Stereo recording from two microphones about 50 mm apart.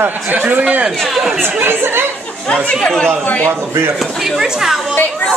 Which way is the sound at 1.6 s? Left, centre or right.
Right.